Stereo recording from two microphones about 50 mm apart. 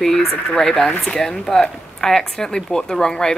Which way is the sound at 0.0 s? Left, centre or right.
Centre.